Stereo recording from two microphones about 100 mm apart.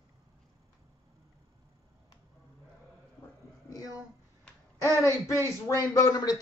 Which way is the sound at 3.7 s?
40° left (ahead or behind).